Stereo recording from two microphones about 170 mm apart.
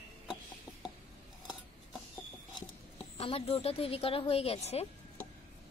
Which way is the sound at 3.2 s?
35° left (ahead or behind).